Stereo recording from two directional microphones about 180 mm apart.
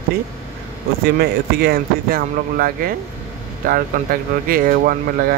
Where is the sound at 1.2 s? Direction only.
60° right (ahead or behind).